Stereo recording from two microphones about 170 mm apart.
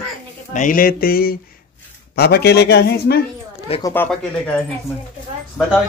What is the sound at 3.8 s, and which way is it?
Speech, 20° left (ahead or behind).